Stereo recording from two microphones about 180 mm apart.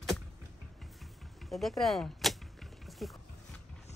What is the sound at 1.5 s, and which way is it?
Speech, centre (ahead or behind).